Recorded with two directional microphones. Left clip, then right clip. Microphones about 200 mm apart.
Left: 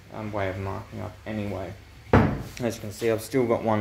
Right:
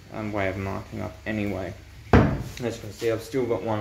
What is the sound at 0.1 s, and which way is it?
Speech, 10° right (ahead or behind).